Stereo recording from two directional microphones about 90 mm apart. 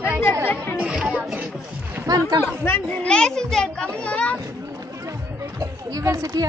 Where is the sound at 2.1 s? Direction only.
45° right (ahead or behind).